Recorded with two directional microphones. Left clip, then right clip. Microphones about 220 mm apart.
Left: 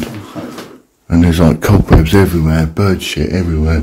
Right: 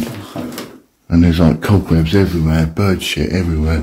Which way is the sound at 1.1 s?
10° left (ahead or behind).